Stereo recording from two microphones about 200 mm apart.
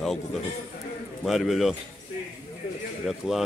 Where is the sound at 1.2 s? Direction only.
Centre (ahead or behind).